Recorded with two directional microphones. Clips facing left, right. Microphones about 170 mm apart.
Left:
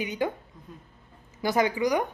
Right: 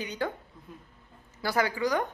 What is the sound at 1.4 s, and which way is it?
Speech, 20° left (ahead or behind).